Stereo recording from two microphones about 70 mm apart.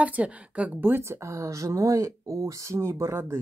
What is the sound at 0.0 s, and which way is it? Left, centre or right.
Speech, centre.